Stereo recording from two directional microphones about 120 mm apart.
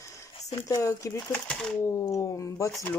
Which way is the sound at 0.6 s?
25° left (ahead or behind).